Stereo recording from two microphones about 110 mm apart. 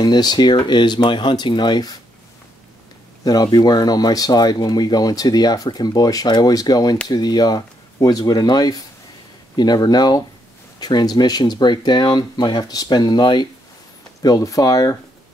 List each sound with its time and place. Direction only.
0.0 s speech: 40° left (ahead or behind)
3.3 s speech: 35° left (ahead or behind)